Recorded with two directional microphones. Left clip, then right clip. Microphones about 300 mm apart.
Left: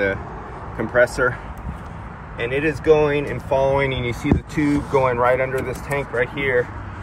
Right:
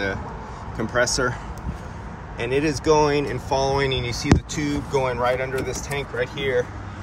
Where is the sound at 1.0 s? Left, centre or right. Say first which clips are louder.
Left 5 dB; centre.